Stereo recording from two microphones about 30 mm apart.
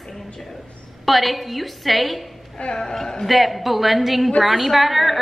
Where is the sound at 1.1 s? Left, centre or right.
Centre.